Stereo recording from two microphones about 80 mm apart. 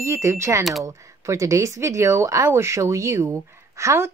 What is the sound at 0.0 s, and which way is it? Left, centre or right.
Speech, right.